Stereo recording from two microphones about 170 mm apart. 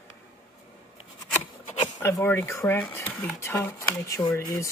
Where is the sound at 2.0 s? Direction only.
15° left (ahead or behind).